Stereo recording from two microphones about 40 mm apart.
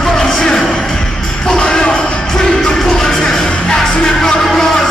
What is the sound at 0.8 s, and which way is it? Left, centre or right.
Music, centre.